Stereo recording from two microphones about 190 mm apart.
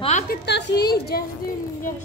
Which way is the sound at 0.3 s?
65° left (ahead or behind).